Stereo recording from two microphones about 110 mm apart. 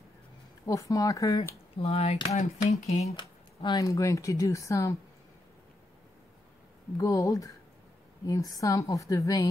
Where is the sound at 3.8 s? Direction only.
30° left (ahead or behind).